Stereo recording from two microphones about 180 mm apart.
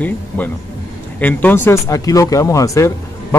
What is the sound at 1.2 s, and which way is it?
Speech, 10° left (ahead or behind).